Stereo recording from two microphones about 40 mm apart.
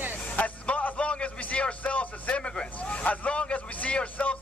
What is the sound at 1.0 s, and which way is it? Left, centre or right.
Vehicle, left.